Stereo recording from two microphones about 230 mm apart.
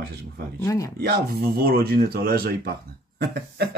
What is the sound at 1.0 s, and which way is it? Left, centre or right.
Speech, right.